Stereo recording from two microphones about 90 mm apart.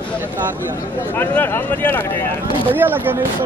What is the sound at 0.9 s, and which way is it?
Speech, 20° left (ahead or behind).